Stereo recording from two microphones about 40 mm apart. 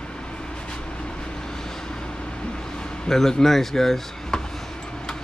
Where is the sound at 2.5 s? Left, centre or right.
Left.